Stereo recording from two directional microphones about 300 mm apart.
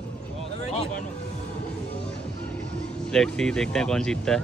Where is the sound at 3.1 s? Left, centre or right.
Centre.